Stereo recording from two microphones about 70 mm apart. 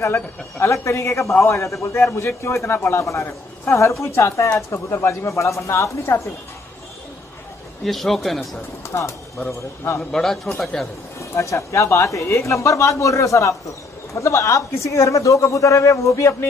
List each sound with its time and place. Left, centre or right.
0.7 s a man's voice: left
7.8 s speech: centre
9.5 s a man's voice: left
10.1 s speech: centre
11.3 s a man's voice: left